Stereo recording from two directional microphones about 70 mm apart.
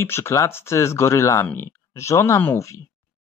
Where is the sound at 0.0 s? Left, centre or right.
Left.